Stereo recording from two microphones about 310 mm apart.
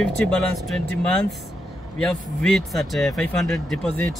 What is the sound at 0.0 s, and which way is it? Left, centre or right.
Speech, centre.